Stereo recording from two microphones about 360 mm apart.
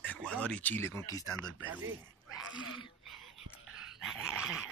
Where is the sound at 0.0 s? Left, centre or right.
Centre.